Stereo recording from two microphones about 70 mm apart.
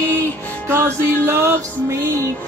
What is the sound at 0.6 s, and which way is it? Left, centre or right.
Music, right.